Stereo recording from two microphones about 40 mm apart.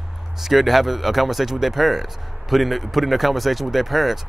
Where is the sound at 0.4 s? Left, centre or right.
Centre.